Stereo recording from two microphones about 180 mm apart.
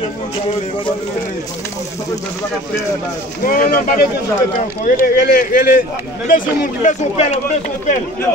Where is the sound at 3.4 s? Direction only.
50° left (ahead or behind).